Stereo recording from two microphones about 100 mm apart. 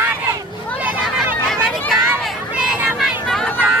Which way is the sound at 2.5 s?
5° right (ahead or behind).